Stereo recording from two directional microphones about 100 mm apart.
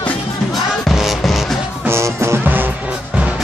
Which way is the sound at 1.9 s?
25° right (ahead or behind).